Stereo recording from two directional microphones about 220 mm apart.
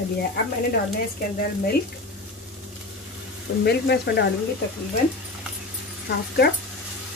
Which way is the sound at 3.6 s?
50° left (ahead or behind).